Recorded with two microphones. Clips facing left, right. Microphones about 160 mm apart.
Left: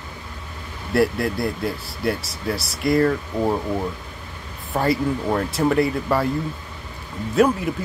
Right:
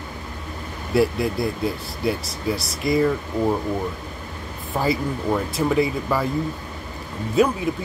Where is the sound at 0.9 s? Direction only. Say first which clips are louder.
Even; centre (ahead or behind).